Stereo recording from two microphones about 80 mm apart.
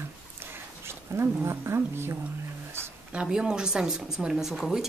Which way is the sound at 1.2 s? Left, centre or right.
Right.